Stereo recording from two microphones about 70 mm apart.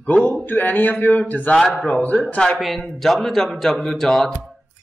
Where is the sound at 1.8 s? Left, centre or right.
Left.